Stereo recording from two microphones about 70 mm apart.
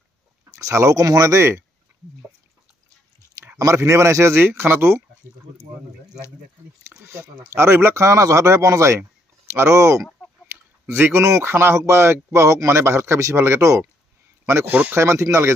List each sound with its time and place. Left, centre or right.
0.5 s speech: right
3.8 s speech: right
7.0 s speech: right
10.5 s a sound: right
11.4 s speech: right
14.7 s speech: right
15.0 s speech: right